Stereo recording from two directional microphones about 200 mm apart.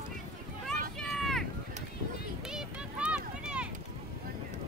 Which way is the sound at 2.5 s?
5° right (ahead or behind).